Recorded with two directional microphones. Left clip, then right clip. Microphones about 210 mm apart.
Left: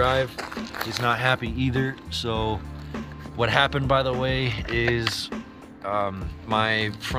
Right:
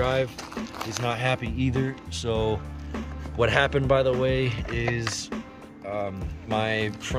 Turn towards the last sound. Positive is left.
turn(degrees=-15)  # may be behind; listen again after turning